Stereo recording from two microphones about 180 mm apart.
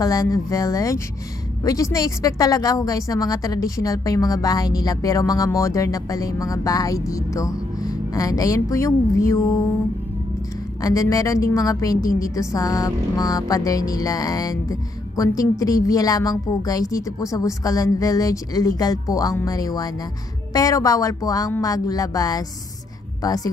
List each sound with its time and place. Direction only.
0.0 s a woman's voice: 20° left (ahead or behind)
10.8 s a woman's voice: 20° left (ahead or behind)